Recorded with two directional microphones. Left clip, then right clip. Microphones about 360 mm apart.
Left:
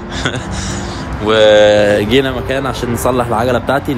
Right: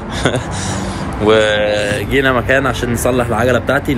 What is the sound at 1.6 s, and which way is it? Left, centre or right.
Speech, left.